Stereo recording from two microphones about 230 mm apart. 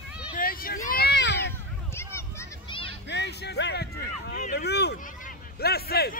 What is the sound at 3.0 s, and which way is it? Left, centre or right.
A man's voice, left.